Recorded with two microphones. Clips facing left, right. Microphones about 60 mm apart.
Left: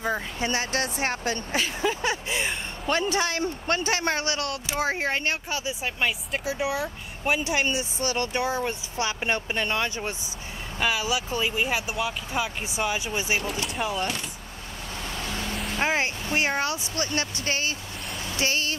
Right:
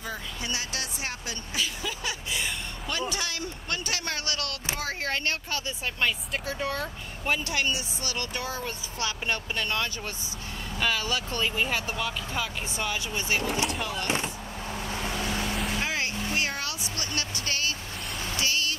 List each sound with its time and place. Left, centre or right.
0.0 s speech: left; by 13.5 s centre
14.0 s speech: right
14.9 s vehicle: right
15.8 s vehicle: left
16.9 s speech: left
18.4 s music: left